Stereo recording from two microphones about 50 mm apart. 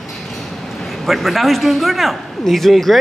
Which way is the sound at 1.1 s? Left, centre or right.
Centre.